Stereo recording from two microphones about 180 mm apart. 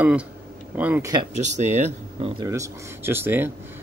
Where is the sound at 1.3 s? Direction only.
40° right (ahead or behind).